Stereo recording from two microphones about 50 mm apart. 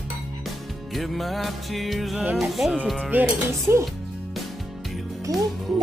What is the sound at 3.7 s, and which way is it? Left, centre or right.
Speech, right.